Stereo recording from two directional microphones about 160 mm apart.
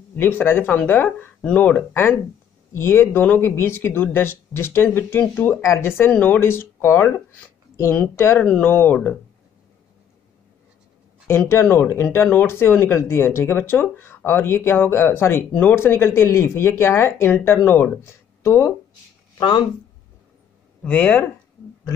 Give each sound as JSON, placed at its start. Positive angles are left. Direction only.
{"t": 0.1, "sound": "speech", "side_deg": 15}
{"t": 11.2, "sound": "speech", "side_deg": 15}
{"t": 20.8, "sound": "speech", "side_deg": 10}